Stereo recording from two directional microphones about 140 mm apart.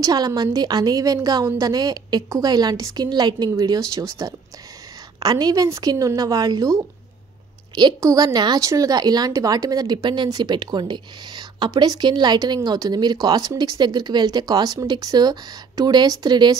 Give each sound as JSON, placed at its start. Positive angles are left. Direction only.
{"t": 0.0, "sound": "a woman's voice", "side_deg": -30}
{"t": 7.7, "sound": "a woman's voice", "side_deg": -25}